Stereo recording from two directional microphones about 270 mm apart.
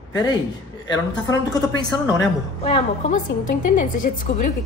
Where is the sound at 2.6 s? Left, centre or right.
Left.